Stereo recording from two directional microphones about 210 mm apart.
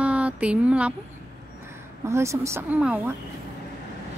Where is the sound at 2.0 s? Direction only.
15° right (ahead or behind).